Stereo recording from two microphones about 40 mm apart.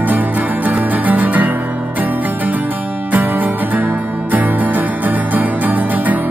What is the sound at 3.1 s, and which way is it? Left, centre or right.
Music, right.